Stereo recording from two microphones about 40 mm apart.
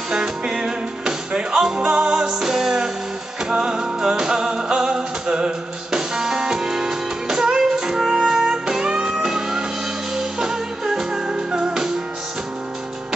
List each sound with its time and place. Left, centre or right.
0.1 s music: centre